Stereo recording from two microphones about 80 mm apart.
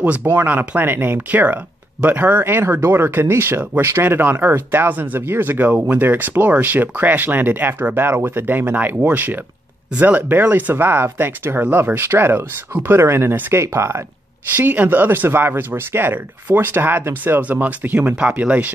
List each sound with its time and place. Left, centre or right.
0.0 s speech: right